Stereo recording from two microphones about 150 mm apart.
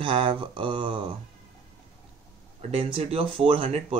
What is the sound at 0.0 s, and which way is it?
Speech, 35° right (ahead or behind).